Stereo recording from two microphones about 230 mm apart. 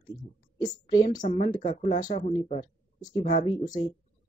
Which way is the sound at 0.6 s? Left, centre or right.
Centre.